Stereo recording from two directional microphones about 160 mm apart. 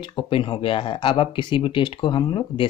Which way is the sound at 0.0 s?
30° left (ahead or behind).